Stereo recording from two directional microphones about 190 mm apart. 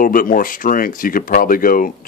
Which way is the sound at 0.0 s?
45° left (ahead or behind).